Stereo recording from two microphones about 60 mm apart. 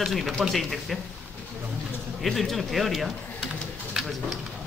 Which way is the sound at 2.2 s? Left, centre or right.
Centre.